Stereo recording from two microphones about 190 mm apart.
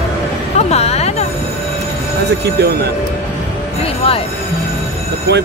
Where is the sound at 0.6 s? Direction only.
35° left (ahead or behind).